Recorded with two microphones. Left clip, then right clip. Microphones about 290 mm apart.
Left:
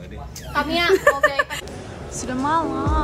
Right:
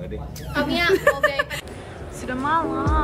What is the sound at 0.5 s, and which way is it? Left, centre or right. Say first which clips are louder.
Speech: left 1 dB; centre.